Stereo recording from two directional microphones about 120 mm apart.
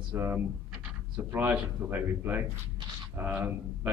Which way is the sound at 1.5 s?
15° right (ahead or behind).